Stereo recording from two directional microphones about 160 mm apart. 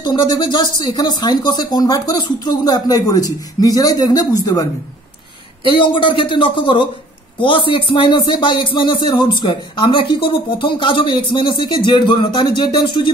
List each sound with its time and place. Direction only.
0.0 s speech: 25° left (ahead or behind)
5.7 s speech: 30° left (ahead or behind)